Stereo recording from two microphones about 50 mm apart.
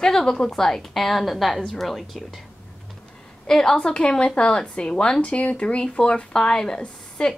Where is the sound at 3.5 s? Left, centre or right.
Centre.